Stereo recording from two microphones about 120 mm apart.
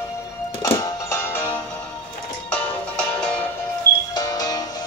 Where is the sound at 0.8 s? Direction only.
25° left (ahead or behind).